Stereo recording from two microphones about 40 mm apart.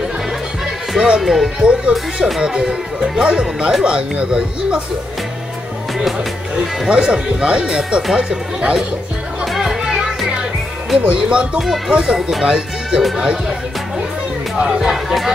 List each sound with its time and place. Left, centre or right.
0.9 s speech: right
1.6 s speech: right
6.9 s speech: right
9.4 s music: centre
11.1 s speech: right
14.8 s speech: centre